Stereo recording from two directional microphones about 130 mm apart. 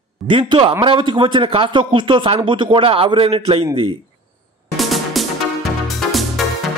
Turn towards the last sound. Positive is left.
turn(degrees=0)  # may be behind; listen again after turning